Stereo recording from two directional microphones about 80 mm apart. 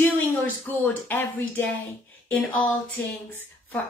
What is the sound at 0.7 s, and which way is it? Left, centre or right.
Speech, left.